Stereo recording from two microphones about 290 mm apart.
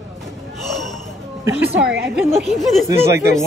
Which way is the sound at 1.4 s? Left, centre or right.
Centre.